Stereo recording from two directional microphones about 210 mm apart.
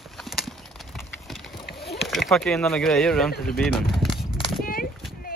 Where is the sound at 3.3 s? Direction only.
45° left (ahead or behind).